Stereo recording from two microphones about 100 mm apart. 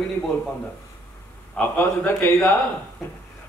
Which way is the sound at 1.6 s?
20° left (ahead or behind).